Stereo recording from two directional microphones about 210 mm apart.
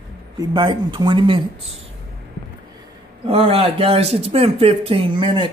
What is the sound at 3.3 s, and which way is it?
Speech, 25° right (ahead or behind).